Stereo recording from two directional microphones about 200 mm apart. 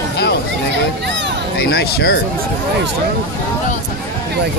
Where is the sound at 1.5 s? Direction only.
55° left (ahead or behind).